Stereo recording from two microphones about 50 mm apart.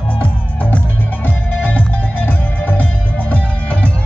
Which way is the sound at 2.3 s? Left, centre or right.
Left.